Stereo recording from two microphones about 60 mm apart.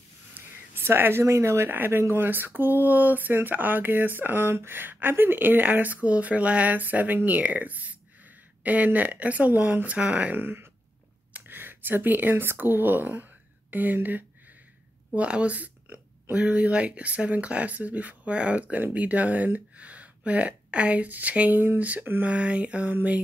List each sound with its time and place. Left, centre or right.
0.3 s a sound: right
1.2 s speech: right
1.7 s speech: right
15.0 s speech: centre